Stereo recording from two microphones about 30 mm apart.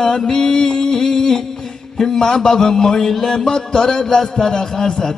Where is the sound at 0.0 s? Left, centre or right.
Centre.